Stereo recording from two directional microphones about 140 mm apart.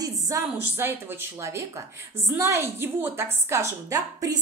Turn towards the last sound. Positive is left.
turn(degrees=-20)  # may be behind; listen again after turning